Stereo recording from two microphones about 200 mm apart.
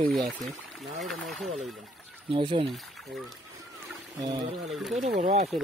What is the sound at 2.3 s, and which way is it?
Speech, 25° right (ahead or behind).